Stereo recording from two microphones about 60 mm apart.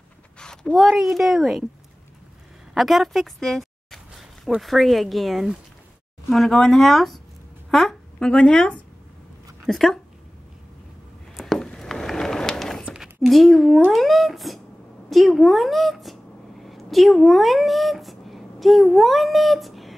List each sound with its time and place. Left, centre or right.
0.4 s a sound: centre
0.7 s a woman's voice: centre
2.7 s a woman's voice: centre
6.5 s a woman's voice: centre
7.7 s a sound: centre
8.3 s speech: centre
9.7 s a woman's voice: centre
11.3 s a sound: centre
12.9 s a woman's voice: centre